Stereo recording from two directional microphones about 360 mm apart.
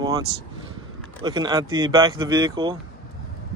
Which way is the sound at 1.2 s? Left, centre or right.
Centre.